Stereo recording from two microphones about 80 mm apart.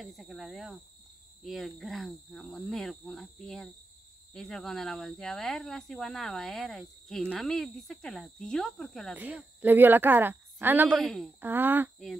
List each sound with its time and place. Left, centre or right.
0.0 s speech: centre
9.1 s speech: centre
11.0 s speech: centre
11.4 s speech: right